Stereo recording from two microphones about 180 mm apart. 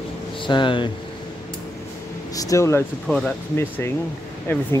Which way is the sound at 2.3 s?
20° left (ahead or behind).